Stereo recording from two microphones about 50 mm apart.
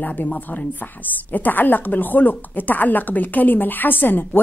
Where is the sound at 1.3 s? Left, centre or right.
Left.